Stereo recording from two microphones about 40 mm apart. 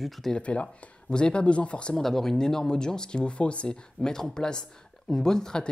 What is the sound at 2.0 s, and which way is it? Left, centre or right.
Speech, centre.